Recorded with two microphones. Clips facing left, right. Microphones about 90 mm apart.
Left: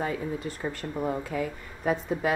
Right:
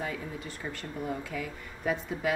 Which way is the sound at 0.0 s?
40° left (ahead or behind).